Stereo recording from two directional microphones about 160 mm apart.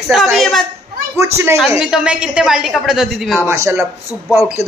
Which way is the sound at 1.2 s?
20° right (ahead or behind).